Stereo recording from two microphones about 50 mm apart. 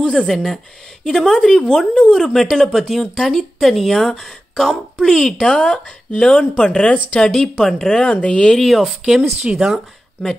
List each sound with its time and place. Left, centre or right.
0.0 s speech: left
0.3 s speech: centre; by 7.2 s left
7.2 s speech: centre
8.5 s speech: centre
9.5 s speech: centre